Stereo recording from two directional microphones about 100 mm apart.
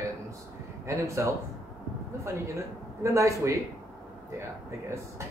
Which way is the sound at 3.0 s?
30° right (ahead or behind).